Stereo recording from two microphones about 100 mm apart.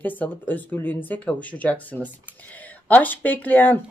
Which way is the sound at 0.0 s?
20° left (ahead or behind).